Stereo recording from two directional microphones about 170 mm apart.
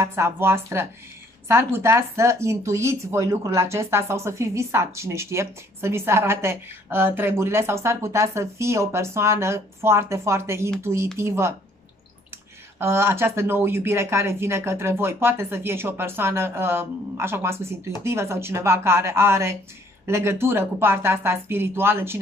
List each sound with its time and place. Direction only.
0.0 s speech: 15° right (ahead or behind)
12.7 s speech: 15° right (ahead or behind)